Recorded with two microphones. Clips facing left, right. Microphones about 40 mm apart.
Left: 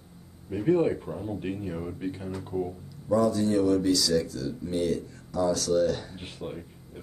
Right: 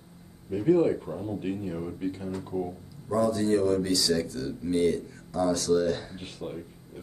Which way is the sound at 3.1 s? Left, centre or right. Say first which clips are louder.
Left 1 dB; right.